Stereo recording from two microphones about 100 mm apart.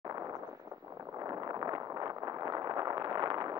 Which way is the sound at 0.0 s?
35° right (ahead or behind).